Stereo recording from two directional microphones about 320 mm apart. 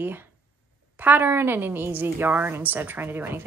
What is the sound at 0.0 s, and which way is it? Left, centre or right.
A woman's voice, centre.